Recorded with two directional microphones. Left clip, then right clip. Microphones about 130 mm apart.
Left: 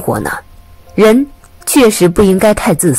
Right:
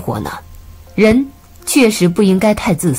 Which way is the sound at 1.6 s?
40° left (ahead or behind).